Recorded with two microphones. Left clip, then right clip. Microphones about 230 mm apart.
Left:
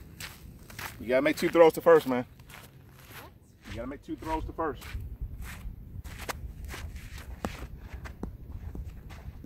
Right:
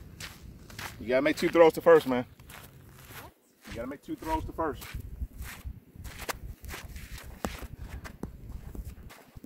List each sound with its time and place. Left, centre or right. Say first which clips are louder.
0.2 s biting: left 1 dB; left
0.7 s speech: left 1 dB; left; by 2.2 s centre
3.6 s speech: right 1 dB; right
6.0 s a sound: right 1 dB; right